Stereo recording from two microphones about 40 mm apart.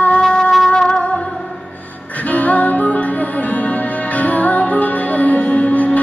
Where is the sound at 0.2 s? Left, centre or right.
Left.